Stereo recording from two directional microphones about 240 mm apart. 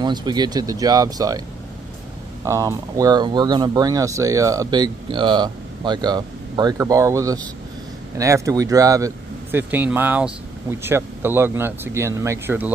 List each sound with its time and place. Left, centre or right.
0.0 s speech: centre
2.4 s speech: centre